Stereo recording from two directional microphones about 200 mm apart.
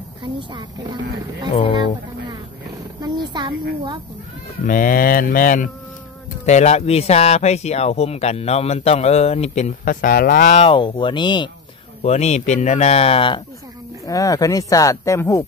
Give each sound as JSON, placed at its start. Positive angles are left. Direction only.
{"t": 0.2, "sound": "speech", "side_deg": -25}
{"t": 3.0, "sound": "speech", "side_deg": -20}
{"t": 4.6, "sound": "mantra", "side_deg": 45}
{"t": 6.4, "sound": "speech", "side_deg": 35}
{"t": 12.0, "sound": "speech", "side_deg": 35}
{"t": 14.0, "sound": "speech", "side_deg": 15}